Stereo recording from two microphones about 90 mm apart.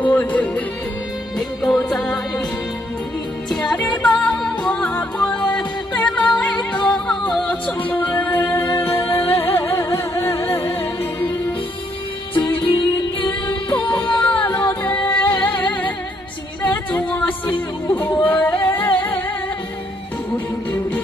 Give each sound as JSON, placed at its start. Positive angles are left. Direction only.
{"t": 0.0, "sound": "speech", "side_deg": 20}
{"t": 1.6, "sound": "music", "side_deg": 5}
{"t": 3.7, "sound": "music", "side_deg": 15}
{"t": 12.4, "sound": "music", "side_deg": 25}
{"t": 14.2, "sound": "music", "side_deg": 20}
{"t": 16.6, "sound": "singing", "side_deg": 20}